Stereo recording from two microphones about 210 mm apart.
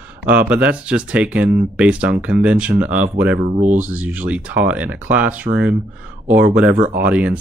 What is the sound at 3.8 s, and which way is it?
Speech, 5° right (ahead or behind).